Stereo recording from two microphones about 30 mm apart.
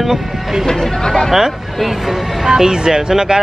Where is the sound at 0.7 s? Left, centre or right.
Centre.